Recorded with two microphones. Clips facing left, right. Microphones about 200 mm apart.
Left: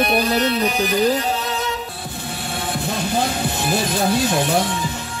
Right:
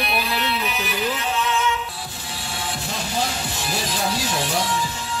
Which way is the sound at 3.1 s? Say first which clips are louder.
Left 4 dB; 55° left (ahead or behind).